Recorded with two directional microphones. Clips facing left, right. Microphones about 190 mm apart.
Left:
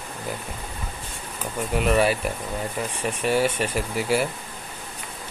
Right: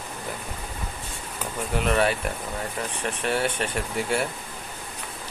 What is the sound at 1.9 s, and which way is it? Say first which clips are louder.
Speech: left 2 dB; 5° left (ahead or behind).